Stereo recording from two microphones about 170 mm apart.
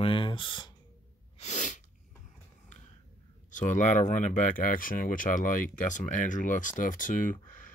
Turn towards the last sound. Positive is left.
turn(degrees=50)  # may be behind; listen again after turning